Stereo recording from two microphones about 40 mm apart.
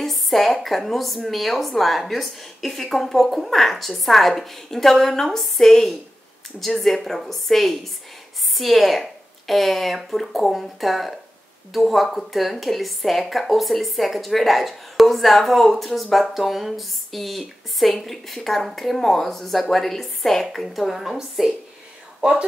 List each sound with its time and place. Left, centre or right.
0.0 s a woman's voice: centre
22.2 s a woman's voice: right